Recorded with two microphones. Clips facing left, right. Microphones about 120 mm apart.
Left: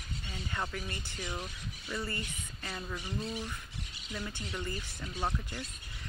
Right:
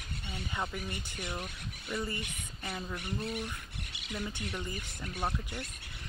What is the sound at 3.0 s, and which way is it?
Speech, 60° right (ahead or behind).